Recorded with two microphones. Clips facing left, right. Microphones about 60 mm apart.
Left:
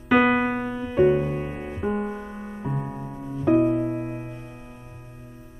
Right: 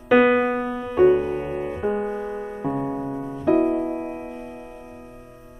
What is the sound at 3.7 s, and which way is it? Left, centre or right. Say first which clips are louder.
Music: right 1 dB; centre.